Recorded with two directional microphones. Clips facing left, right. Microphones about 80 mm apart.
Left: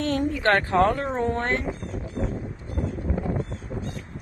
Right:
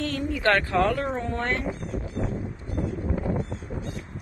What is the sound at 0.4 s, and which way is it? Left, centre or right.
Speech, left.